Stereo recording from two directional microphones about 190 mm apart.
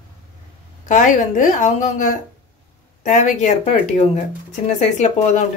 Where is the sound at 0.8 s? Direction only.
40° left (ahead or behind).